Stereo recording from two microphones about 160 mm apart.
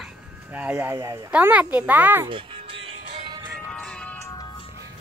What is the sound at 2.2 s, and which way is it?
Music, 30° right (ahead or behind).